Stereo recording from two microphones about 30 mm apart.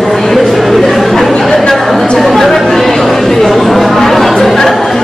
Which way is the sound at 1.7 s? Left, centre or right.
Centre.